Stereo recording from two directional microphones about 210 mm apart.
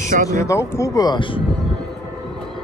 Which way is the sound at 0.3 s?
15° left (ahead or behind).